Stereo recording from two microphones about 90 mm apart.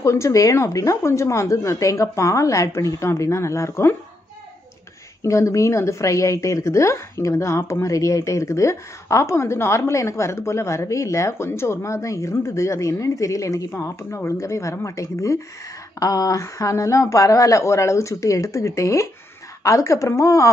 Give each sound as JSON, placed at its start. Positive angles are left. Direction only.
{"t": 0.0, "sound": "a woman's voice", "side_deg": 35}
{"t": 5.2, "sound": "a woman's voice", "side_deg": 35}